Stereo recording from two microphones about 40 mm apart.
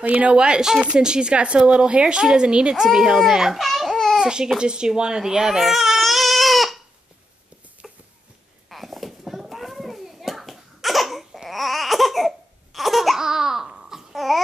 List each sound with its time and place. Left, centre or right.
0.1 s speech: right
0.4 s a woman's voice: centre
3.5 s babbling: centre
4.2 s a child's voice: right
4.6 s baby cry: right; by 6.8 s centre
7.8 s a sound: centre
11.4 s laughter: centre
13.2 s babbling: centre